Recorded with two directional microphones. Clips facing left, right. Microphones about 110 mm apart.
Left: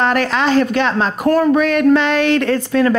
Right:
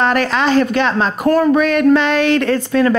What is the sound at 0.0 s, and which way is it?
Speech, 25° right (ahead or behind).